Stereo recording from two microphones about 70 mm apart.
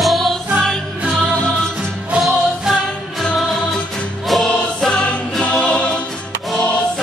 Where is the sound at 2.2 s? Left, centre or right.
Centre.